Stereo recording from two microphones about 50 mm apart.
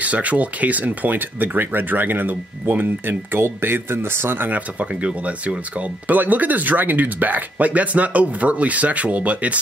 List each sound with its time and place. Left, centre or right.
0.0 s speech: right
4.5 s speech: right